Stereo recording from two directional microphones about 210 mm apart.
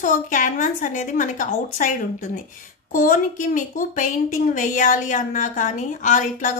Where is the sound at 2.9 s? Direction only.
40° left (ahead or behind).